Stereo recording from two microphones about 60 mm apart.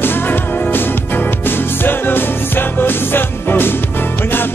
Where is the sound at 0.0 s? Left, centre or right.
Left.